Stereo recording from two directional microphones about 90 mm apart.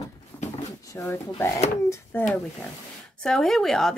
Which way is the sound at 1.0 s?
30° left (ahead or behind).